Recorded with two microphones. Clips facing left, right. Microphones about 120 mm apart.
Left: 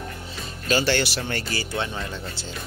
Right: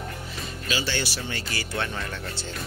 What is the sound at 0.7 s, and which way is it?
Speech, 60° left (ahead or behind).